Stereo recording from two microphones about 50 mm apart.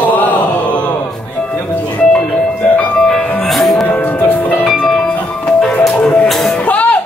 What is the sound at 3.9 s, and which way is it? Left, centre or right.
Music, left.